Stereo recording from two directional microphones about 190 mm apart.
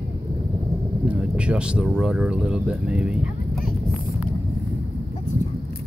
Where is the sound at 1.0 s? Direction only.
5° right (ahead or behind).